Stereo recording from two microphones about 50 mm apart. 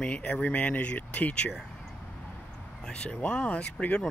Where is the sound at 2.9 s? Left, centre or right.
Centre.